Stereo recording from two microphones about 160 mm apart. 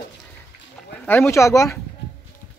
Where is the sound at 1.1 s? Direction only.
15° left (ahead or behind).